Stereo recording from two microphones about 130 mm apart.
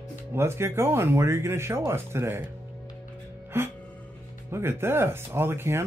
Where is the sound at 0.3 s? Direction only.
20° right (ahead or behind).